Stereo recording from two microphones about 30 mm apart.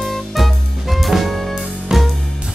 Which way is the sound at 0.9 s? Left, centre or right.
Centre.